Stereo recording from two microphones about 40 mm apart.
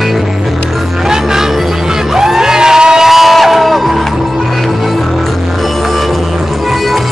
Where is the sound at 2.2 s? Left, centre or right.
Centre.